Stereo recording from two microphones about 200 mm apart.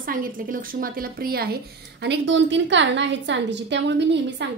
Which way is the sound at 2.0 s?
60° right (ahead or behind).